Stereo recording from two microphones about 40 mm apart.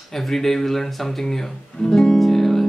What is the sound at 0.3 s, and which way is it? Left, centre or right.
Speech, centre.